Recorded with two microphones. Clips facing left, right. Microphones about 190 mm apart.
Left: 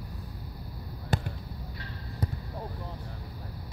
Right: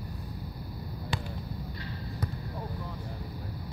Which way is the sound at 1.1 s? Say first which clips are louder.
Left 5 dB; 45° left (ahead or behind).